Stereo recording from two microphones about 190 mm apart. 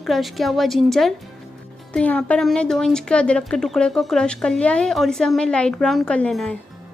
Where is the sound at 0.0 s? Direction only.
Centre (ahead or behind).